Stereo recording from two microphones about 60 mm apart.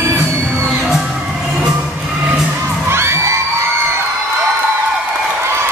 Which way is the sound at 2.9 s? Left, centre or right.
Right.